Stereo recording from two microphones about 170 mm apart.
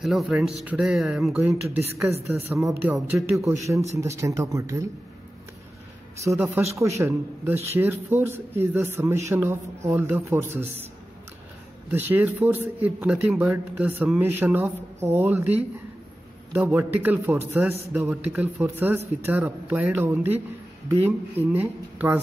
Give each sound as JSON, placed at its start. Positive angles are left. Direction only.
{"t": 0.0, "sound": "speech", "side_deg": 0}
{"t": 6.2, "sound": "speech", "side_deg": -15}
{"t": 11.9, "sound": "speech", "side_deg": -10}